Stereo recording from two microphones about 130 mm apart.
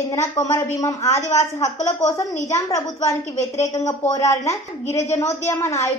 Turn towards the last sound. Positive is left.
turn(degrees=20)  # may be behind; listen again after turning